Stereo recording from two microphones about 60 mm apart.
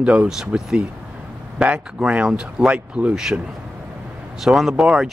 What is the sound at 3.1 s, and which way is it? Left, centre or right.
Speech, centre.